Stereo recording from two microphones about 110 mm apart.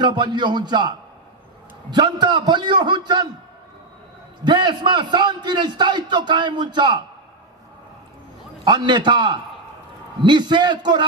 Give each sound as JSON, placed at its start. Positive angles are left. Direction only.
{"t": 0.0, "sound": "a man's voice", "side_deg": -45}
{"t": 4.5, "sound": "a man's voice", "side_deg": -45}
{"t": 8.6, "sound": "a man's voice", "side_deg": -40}